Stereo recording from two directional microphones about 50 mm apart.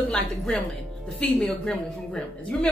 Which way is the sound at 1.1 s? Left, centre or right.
Centre.